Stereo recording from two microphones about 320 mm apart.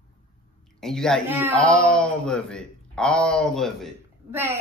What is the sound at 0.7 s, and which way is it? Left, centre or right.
A man's voice, centre.